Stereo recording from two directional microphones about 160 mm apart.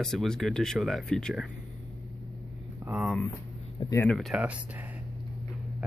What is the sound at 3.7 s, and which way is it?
Speech, 25° left (ahead or behind).